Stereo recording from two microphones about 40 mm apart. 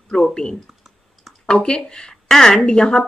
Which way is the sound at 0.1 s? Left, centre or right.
Left.